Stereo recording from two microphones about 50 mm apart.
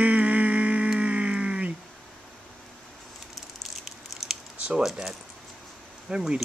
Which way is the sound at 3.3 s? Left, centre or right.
Centre.